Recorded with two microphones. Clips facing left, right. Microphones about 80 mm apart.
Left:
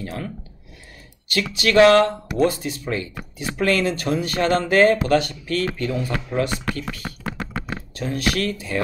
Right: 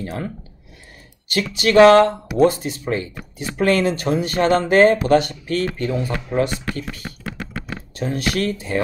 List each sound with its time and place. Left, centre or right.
0.0 s speech: right
1.3 s speech: right
6.7 s speech: left
7.9 s speech: right